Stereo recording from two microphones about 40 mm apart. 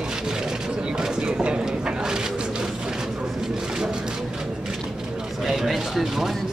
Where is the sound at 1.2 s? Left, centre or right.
Right.